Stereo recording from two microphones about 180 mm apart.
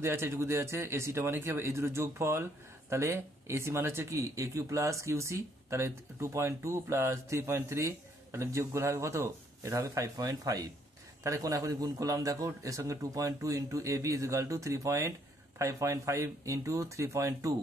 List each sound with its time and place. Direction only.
0.0 s speech: 15° right (ahead or behind)